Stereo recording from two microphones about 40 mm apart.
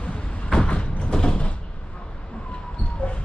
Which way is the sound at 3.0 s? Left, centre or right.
Left.